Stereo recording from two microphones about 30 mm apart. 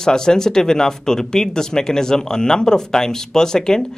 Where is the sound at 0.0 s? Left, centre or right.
Left.